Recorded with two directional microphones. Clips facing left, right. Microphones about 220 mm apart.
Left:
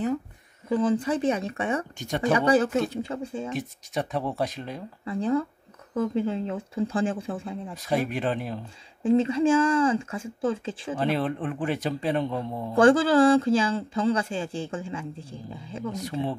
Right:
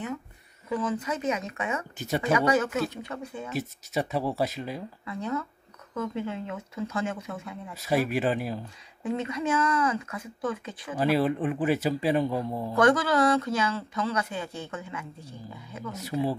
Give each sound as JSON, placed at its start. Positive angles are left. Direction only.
{"t": 0.7, "sound": "speech", "side_deg": 30}
{"t": 2.0, "sound": "a man's voice", "side_deg": -5}
{"t": 2.3, "sound": "speech", "side_deg": 35}
{"t": 3.5, "sound": "a man's voice", "side_deg": -5}
{"t": 5.0, "sound": "speech", "side_deg": 30}
{"t": 7.8, "sound": "a man's voice", "side_deg": -5}
{"t": 9.0, "sound": "speech", "side_deg": 30}
{"t": 11.0, "sound": "a man's voice", "side_deg": -5}
{"t": 12.7, "sound": "speech", "side_deg": 30}
{"t": 15.9, "sound": "a man's voice", "side_deg": -5}